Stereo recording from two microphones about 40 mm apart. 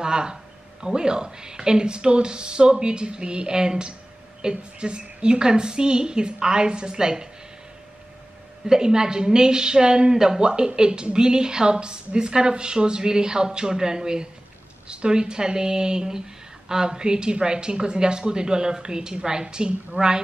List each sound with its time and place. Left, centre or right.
0.0 s speech: centre
8.6 s speech: centre